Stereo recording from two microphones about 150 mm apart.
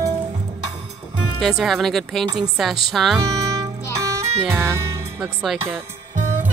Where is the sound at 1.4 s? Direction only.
Centre (ahead or behind).